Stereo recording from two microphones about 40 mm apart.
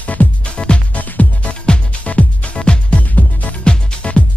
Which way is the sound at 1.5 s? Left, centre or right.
Left.